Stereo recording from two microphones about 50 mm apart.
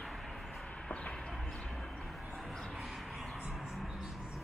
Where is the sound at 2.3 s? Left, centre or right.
Centre.